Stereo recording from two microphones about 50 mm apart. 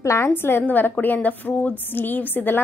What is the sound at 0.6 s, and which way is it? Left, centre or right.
A woman's voice, left.